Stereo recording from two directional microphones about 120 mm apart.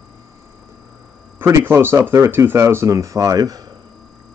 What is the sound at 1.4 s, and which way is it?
Speech, 20° right (ahead or behind).